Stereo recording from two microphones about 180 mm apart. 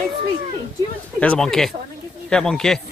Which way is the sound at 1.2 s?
5° left (ahead or behind).